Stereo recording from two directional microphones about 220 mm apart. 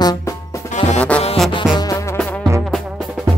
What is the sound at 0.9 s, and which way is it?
Music, 5° left (ahead or behind).